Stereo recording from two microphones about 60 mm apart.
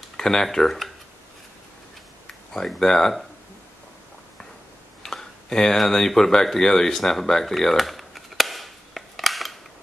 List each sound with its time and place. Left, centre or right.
0.2 s speech: centre
2.2 s speech: centre
5.0 s a sound: centre